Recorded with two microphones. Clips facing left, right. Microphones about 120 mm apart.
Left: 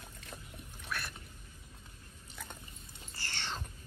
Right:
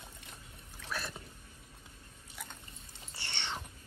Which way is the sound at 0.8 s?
25° right (ahead or behind).